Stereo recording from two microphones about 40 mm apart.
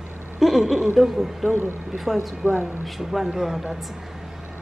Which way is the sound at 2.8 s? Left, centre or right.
Centre.